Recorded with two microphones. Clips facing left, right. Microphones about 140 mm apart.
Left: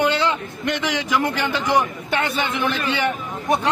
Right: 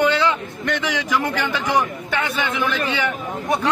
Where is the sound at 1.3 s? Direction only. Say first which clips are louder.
Left 1 dB; 20° left (ahead or behind).